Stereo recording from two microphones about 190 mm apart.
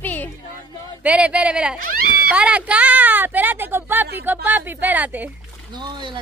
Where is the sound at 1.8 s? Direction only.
50° right (ahead or behind).